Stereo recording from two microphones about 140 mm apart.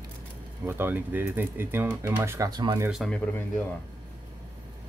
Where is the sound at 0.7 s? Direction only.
15° right (ahead or behind).